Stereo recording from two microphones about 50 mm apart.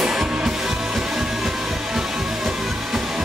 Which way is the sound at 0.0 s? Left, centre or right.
Centre.